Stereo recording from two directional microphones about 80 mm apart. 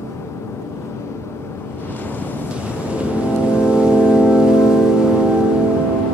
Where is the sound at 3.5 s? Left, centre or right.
Centre.